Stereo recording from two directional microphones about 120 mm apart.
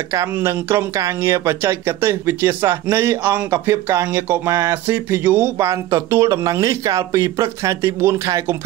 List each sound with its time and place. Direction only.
0.1 s speech: 25° right (ahead or behind)